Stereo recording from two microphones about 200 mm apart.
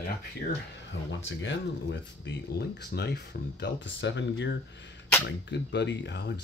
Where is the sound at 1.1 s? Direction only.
65° left (ahead or behind).